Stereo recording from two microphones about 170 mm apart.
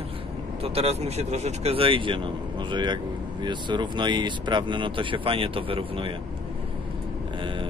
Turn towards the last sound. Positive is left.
turn(degrees=-30)  # may be behind; listen again after turning